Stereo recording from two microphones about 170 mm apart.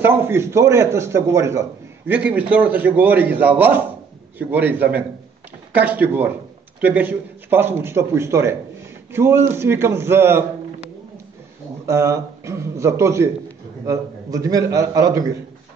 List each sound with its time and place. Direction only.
0.0 s a man's voice: 15° right (ahead or behind)
11.8 s a man's voice: 15° right (ahead or behind)